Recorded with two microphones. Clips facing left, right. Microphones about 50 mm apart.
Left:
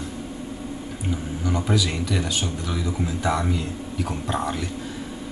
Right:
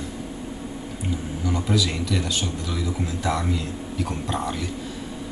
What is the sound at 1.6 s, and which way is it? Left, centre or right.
Speech, centre.